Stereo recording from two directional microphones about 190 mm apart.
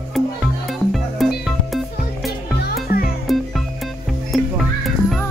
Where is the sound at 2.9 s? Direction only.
50° left (ahead or behind).